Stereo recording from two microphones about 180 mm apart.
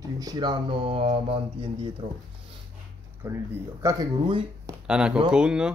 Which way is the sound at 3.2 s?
10° right (ahead or behind).